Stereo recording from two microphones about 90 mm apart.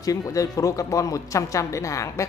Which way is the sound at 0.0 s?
40° left (ahead or behind).